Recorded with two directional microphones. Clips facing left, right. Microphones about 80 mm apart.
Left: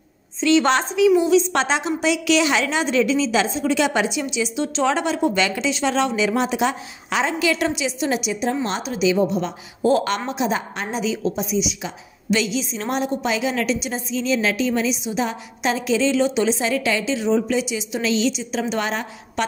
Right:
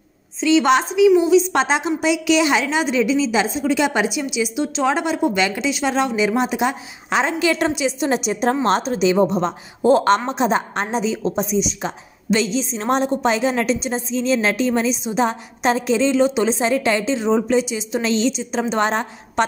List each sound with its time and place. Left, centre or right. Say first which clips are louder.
0.4 s a woman's voice: right 2 dB; centre; by 19.4 s right